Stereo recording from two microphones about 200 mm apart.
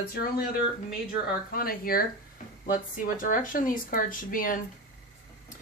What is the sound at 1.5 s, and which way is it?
Speech, 45° left (ahead or behind).